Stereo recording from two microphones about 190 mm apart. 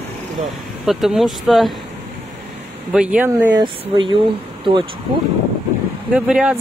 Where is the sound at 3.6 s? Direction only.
25° right (ahead or behind).